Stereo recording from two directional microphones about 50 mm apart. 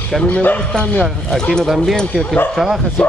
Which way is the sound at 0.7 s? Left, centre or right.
Centre.